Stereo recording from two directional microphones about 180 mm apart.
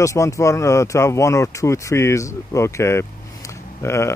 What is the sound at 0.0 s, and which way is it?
Speech, 15° left (ahead or behind).